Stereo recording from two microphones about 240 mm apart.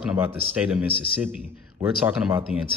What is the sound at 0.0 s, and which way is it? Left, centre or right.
A man's voice, centre.